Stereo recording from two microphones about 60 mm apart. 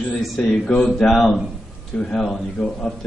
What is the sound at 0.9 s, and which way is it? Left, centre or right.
Speech, centre.